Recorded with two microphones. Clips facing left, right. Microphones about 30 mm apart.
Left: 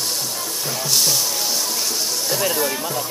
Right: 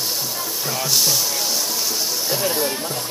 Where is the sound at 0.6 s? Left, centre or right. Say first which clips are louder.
Even; centre.